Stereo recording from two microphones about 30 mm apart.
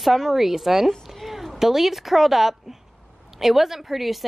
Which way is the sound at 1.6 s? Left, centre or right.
Centre.